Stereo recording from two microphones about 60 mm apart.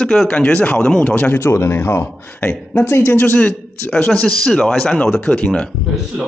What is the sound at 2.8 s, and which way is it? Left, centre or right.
Speech, left.